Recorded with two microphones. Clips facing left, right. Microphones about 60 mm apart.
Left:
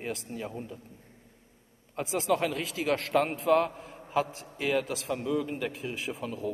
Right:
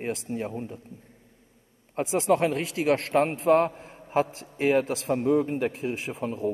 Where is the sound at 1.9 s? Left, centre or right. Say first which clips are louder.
Right 5 dB; right.